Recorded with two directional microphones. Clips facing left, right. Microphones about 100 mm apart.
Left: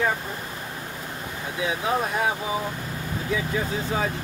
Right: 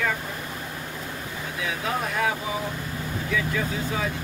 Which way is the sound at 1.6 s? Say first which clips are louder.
Left 4 dB; 25° left (ahead or behind).